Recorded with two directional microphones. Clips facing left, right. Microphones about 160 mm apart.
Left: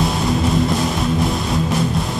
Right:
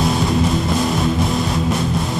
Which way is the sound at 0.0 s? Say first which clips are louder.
Right 1 dB; centre (ahead or behind).